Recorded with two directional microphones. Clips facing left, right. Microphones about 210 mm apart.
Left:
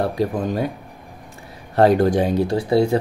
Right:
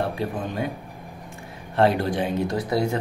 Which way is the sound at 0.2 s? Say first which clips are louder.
Left 7 dB; 40° left (ahead or behind).